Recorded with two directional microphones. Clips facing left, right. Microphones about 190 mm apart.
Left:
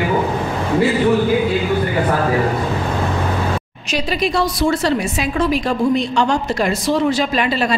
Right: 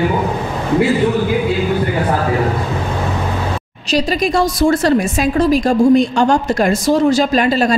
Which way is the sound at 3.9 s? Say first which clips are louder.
Right 4 dB; 45° right (ahead or behind).